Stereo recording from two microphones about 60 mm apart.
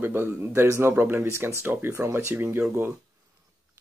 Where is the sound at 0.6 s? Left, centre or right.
Right.